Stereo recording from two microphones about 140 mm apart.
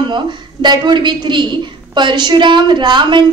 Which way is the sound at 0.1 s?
35° right (ahead or behind).